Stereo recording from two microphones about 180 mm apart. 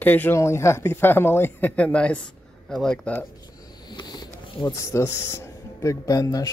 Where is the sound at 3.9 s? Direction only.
25° left (ahead or behind).